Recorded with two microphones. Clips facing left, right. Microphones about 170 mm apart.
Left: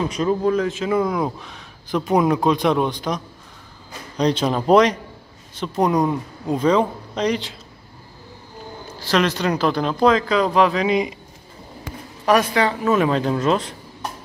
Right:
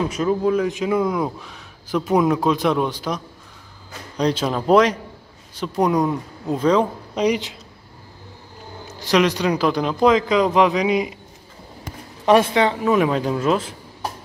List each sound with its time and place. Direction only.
0.1 s speech: 5° right (ahead or behind)
4.2 s speech: 5° right (ahead or behind)
6.0 s speech: 10° left (ahead or behind)
7.2 s speech: 10° right (ahead or behind)
9.0 s speech: 15° right (ahead or behind)
12.3 s speech: 25° right (ahead or behind); by 13.7 s 5° right (ahead or behind)